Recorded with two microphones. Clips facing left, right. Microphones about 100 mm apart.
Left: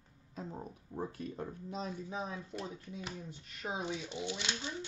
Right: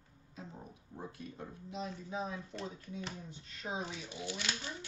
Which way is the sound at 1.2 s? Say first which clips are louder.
Left 5 dB; 40° left (ahead or behind).